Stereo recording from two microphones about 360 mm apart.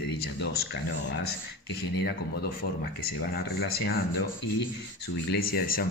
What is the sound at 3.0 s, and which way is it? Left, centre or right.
Speech, left.